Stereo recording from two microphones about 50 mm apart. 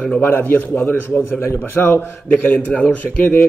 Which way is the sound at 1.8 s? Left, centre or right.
Left.